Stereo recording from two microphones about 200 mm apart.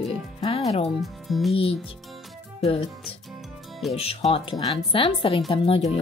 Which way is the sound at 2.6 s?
30° left (ahead or behind).